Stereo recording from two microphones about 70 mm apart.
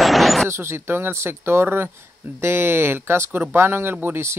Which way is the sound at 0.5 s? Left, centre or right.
Right.